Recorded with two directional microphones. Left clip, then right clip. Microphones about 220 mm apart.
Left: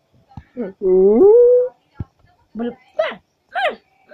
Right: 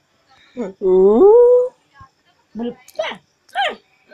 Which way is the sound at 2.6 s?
15° left (ahead or behind).